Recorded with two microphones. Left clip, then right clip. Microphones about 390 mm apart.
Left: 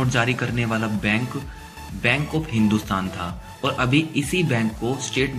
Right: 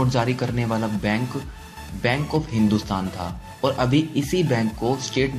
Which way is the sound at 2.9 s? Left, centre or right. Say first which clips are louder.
Left 2 dB; centre.